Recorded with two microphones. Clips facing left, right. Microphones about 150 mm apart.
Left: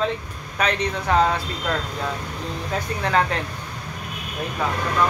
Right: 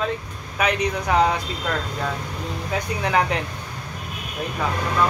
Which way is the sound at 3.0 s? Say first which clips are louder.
Even; 15° right (ahead or behind).